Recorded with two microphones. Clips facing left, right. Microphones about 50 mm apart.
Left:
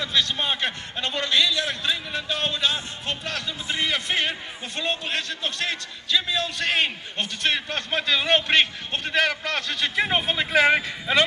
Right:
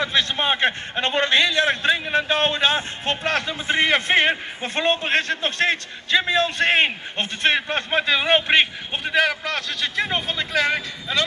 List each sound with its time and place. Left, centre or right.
0.0 s a man's voice: right; by 10.8 s centre